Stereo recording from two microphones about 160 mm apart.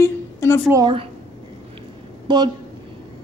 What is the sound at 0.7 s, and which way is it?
Speech, 20° right (ahead or behind).